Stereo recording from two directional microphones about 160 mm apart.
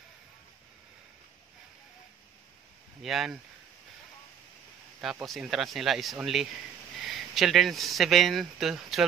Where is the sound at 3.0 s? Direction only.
Centre (ahead or behind).